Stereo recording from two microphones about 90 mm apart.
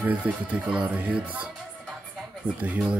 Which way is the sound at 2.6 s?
15° right (ahead or behind).